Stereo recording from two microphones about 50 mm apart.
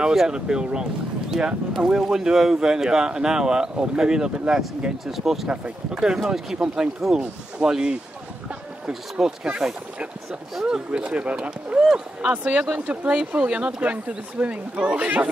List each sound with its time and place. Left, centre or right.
0.0 s speech: centre
0.3 s speech: centre
5.5 s speech: centre
10.9 s speech: right
12.4 s speech: right